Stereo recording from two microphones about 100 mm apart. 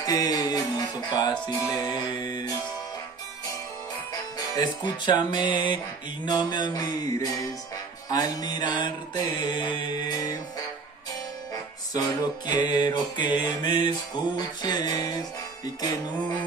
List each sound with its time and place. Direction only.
0.0 s music: 40° left (ahead or behind)
4.1 s music: 45° left (ahead or behind)
8.1 s mantra: 40° left (ahead or behind)
11.9 s mantra: 40° left (ahead or behind)
15.6 s music: 40° left (ahead or behind)